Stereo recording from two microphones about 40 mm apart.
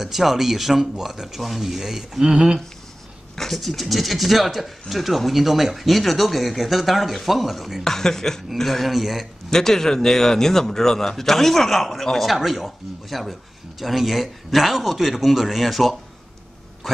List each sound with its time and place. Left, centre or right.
0.0 s a man's voice: centre
3.5 s a man's voice: centre
7.8 s a man's voice: centre
9.5 s a man's voice: centre
16.8 s a sound: centre